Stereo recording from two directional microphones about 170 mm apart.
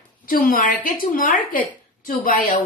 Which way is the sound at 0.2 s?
60° left (ahead or behind).